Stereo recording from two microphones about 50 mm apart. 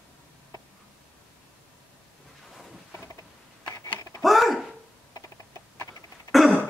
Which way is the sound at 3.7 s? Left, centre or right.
Left.